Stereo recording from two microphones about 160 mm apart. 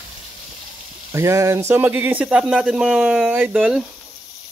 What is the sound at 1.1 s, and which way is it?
Speech, 20° right (ahead or behind).